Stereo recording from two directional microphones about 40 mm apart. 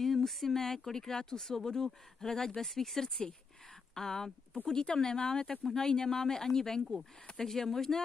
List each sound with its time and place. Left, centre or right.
0.0 s speech: centre